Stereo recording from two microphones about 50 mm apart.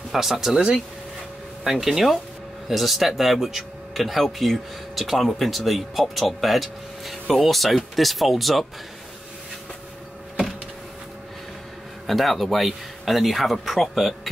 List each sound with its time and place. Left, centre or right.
0.1 s speech: centre
12.1 s speech: centre